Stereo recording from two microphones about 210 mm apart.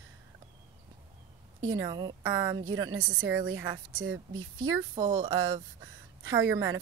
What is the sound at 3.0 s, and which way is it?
Speech, 70° right (ahead or behind).